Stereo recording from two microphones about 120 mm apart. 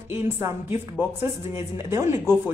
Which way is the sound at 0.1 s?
20° right (ahead or behind).